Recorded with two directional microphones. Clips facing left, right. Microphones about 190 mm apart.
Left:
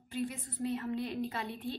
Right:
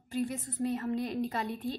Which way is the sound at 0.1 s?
40° right (ahead or behind).